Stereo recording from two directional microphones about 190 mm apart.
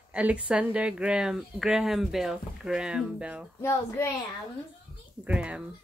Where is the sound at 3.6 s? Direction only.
15° left (ahead or behind).